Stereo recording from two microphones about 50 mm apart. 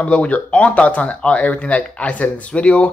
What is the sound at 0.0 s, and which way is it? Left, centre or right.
Speech, left.